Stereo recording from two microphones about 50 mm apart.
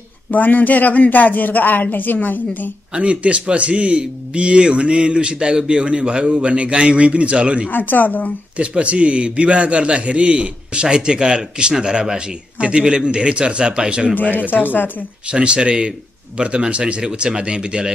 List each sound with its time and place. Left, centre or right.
0.3 s speech: left
2.9 s a man's voice: right
7.7 s speech: left
8.5 s a man's voice: right
14.1 s speech: left
15.2 s a man's voice: right